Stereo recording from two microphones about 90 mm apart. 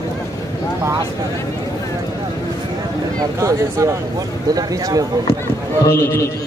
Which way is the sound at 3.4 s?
35° right (ahead or behind).